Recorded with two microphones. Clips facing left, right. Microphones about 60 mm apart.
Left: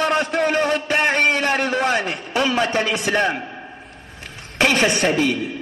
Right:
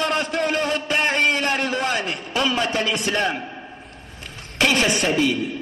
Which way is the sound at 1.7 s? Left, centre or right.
Left.